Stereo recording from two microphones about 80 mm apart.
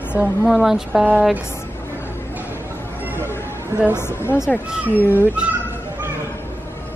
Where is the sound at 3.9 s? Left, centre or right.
Left.